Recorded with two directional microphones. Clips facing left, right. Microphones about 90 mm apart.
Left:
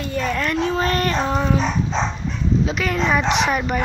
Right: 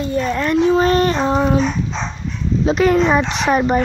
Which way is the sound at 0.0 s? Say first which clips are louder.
Right 4 dB; 25° right (ahead or behind).